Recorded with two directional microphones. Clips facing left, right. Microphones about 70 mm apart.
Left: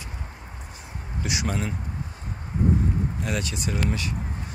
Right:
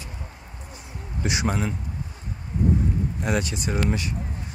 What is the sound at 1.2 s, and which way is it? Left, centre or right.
Speech, right.